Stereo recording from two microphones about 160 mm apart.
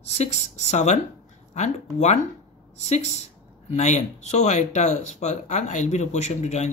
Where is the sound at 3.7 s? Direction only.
45° left (ahead or behind).